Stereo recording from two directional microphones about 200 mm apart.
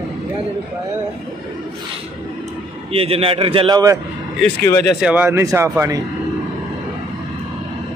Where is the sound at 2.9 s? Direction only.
30° right (ahead or behind).